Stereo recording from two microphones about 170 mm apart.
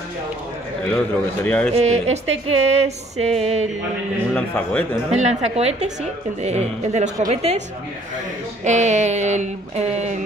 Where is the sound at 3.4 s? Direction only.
35° right (ahead or behind).